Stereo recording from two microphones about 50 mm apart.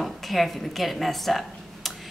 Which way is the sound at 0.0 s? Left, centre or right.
Centre.